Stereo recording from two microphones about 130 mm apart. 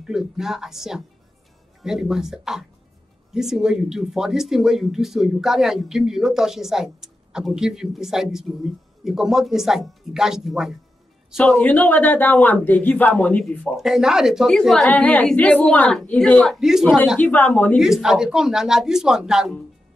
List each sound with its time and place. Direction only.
0.0 s speech: 5° right (ahead or behind)
11.3 s a man's voice: 10° left (ahead or behind)
14.9 s a man's voice: 15° left (ahead or behind)
16.5 s speech: 5° right (ahead or behind)
17.2 s a man's voice: 15° left (ahead or behind)
17.7 s speech: 5° right (ahead or behind)